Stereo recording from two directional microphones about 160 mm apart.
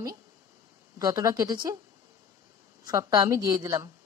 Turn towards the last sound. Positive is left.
turn(degrees=-25)  # may be behind; listen again after turning